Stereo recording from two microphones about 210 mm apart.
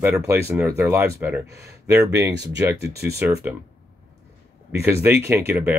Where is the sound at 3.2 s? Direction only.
10° right (ahead or behind).